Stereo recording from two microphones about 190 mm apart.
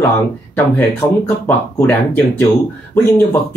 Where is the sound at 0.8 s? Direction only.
10° left (ahead or behind).